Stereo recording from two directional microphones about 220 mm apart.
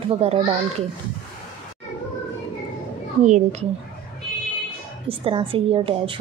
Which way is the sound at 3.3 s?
30° right (ahead or behind).